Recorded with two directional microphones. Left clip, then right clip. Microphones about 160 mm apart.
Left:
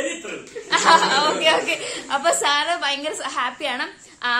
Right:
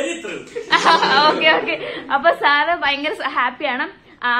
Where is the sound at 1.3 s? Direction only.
Centre (ahead or behind).